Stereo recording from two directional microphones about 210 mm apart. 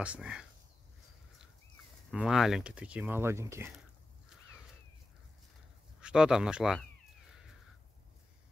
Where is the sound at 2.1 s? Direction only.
Centre (ahead or behind).